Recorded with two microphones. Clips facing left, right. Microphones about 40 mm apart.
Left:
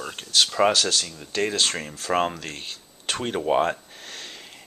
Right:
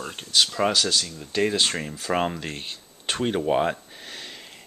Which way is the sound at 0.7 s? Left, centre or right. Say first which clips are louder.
Even; centre.